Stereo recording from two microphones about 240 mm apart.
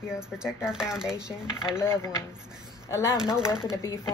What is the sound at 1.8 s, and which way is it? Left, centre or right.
Speech, centre.